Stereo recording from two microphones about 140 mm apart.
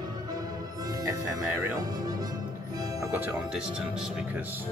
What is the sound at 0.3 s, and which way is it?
Music, 25° right (ahead or behind).